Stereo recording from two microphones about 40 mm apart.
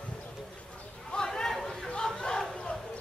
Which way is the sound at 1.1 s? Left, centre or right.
Centre.